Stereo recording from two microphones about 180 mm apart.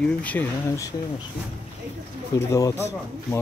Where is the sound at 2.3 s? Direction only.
15° left (ahead or behind).